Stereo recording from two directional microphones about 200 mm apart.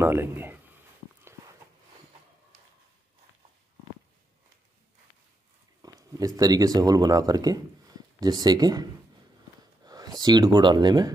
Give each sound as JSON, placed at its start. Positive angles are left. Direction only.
{"t": 0.0, "sound": "speech", "side_deg": -10}
{"t": 5.8, "sound": "speech", "side_deg": -20}
{"t": 9.8, "sound": "speech", "side_deg": -20}